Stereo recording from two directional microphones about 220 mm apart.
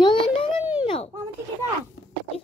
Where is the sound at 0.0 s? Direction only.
20° left (ahead or behind).